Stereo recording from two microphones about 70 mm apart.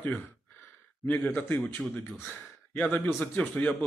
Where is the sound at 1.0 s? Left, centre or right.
Left.